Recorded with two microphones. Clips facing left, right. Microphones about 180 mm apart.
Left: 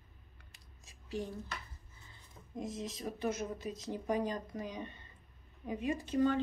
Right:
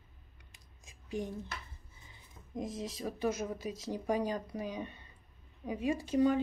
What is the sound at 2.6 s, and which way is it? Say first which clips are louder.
Speech: right 2 dB; 25° left (ahead or behind).